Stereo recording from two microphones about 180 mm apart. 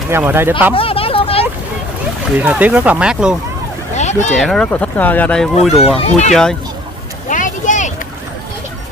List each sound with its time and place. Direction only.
0.1 s speech: 10° right (ahead or behind)
0.7 s a sound: 30° left (ahead or behind)
2.3 s speech: 10° right (ahead or behind)
3.9 s a sound: 40° left (ahead or behind)
4.4 s speech: 5° left (ahead or behind)
5.9 s speech: 35° left (ahead or behind)
7.2 s vehicle: 45° left (ahead or behind)